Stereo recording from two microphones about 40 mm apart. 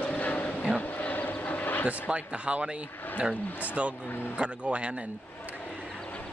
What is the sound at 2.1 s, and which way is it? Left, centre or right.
Speech, right.